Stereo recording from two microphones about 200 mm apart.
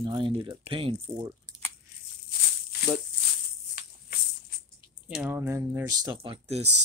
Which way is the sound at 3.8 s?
45° left (ahead or behind).